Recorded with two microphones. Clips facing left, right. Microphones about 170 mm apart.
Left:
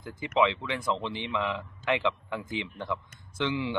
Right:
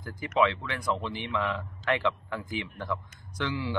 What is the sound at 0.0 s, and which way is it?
Speech, 20° left (ahead or behind).